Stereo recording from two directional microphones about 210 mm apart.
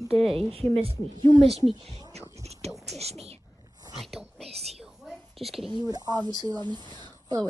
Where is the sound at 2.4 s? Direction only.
30° right (ahead or behind).